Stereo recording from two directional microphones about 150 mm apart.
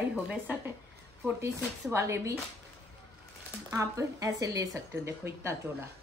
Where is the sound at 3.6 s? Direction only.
20° right (ahead or behind).